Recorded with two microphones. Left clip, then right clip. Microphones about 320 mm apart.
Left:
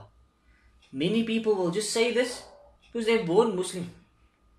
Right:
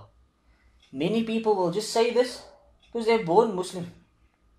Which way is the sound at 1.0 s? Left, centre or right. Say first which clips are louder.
Right 1 dB; centre.